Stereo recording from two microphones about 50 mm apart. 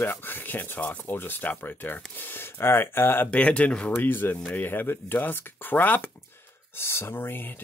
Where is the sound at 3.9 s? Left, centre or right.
Left.